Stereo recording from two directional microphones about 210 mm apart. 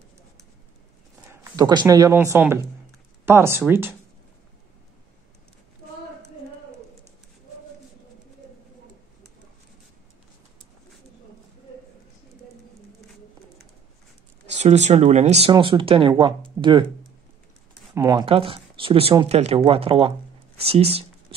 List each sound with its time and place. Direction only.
1.3 s speech: 20° right (ahead or behind)
14.4 s speech: 35° right (ahead or behind)
17.9 s speech: 15° right (ahead or behind)